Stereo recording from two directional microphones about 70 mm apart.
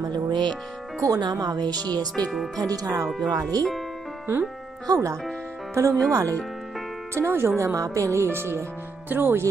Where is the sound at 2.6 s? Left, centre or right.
Right.